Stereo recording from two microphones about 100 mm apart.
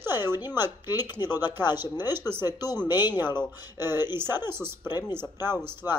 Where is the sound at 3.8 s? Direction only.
25° right (ahead or behind).